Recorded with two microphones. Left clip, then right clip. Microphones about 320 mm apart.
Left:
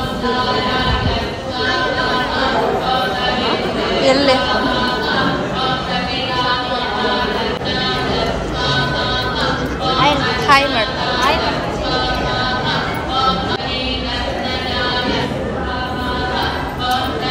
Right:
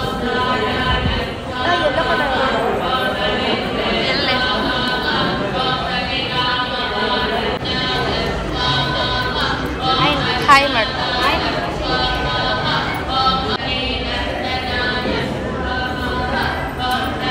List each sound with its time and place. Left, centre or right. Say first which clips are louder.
4.0 s chatter: left 9 dB; centre
10.4 s a woman's voice: right 1 dB; centre